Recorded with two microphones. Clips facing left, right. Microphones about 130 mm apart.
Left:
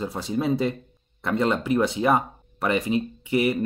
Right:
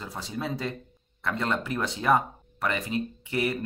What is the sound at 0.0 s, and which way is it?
Speech, 15° left (ahead or behind).